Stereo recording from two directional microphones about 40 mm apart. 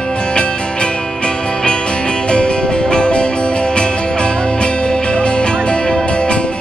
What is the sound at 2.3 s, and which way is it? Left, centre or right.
Music, left.